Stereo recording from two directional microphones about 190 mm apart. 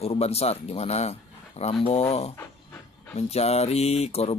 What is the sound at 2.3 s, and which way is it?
Dog, 15° left (ahead or behind).